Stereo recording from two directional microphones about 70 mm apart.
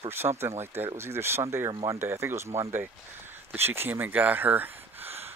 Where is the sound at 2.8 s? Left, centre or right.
Right.